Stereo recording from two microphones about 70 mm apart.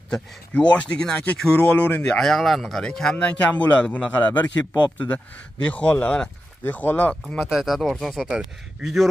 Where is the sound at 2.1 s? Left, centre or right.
Centre.